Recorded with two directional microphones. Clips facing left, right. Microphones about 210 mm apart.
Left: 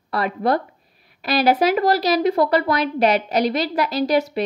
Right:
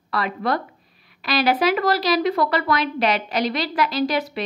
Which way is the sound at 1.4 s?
45° left (ahead or behind).